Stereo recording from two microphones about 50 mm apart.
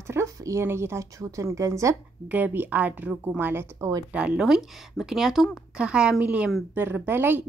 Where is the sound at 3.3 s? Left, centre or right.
Right.